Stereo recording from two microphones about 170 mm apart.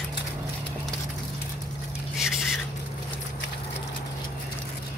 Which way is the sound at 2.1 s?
Centre (ahead or behind).